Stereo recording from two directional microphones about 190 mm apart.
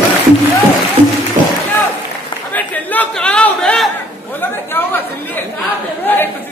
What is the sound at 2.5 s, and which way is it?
A woman's voice, 10° left (ahead or behind).